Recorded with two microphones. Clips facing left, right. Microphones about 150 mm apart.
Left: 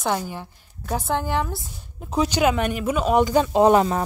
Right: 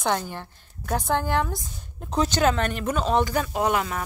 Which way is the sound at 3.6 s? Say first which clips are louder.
Left 9 dB; 30° left (ahead or behind).